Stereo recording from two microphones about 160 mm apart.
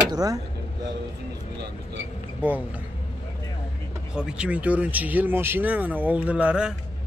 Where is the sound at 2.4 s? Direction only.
10° right (ahead or behind).